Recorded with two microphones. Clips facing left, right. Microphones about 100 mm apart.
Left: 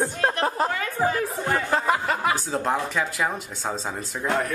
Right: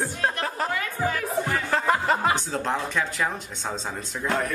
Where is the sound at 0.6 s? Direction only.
30° left (ahead or behind).